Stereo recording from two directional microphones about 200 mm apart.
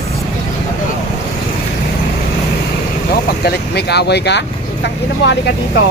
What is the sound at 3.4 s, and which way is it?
Speech, 55° left (ahead or behind).